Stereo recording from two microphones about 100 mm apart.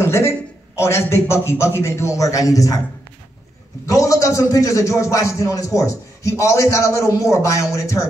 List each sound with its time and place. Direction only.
0.0 s a sound: 25° left (ahead or behind)
0.7 s a man's voice: 25° left (ahead or behind)
3.8 s a man's voice: 30° left (ahead or behind)